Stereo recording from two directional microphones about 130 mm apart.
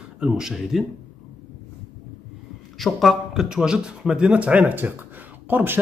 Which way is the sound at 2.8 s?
Centre (ahead or behind).